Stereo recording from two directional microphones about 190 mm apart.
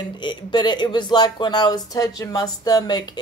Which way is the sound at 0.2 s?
25° left (ahead or behind).